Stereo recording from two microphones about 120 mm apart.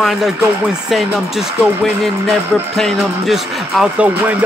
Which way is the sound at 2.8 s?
5° left (ahead or behind).